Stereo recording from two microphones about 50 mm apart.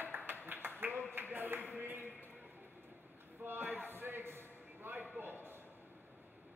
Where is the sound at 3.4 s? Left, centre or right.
Right.